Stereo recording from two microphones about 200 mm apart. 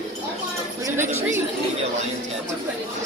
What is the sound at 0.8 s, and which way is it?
Speech, 10° right (ahead or behind).